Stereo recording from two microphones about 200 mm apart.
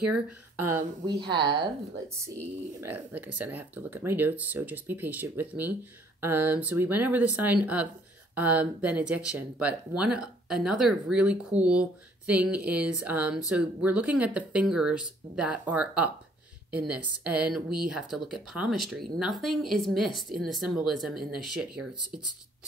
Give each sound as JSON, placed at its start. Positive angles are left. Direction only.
{"t": 1.3, "sound": "a woman's voice", "side_deg": -25}